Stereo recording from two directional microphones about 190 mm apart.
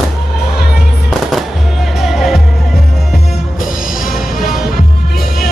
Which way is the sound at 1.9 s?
Centre (ahead or behind).